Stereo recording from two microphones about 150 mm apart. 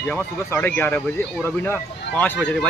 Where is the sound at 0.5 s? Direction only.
10° left (ahead or behind).